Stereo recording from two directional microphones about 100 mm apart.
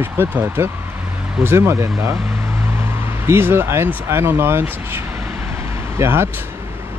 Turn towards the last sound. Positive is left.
turn(degrees=-25)  # may be behind; listen again after turning